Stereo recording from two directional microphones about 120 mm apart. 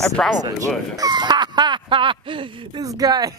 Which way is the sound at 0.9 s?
35° right (ahead or behind).